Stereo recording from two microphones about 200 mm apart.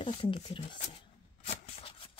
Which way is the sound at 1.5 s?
30° left (ahead or behind).